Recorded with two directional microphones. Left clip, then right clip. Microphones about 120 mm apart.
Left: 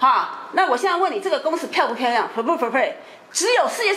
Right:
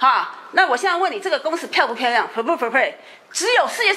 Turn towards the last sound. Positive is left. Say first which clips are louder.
# right 1 dB
turn(degrees=-15)  # may be behind; listen again after turning